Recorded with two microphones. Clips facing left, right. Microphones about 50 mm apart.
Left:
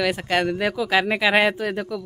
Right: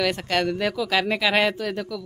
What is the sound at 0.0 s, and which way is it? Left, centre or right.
Speech, centre.